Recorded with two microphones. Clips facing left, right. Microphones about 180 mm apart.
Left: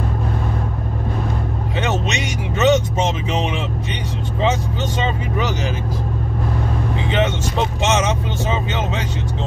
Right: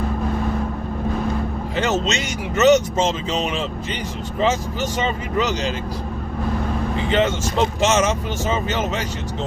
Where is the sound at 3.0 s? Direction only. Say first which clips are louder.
Even; 20° left (ahead or behind).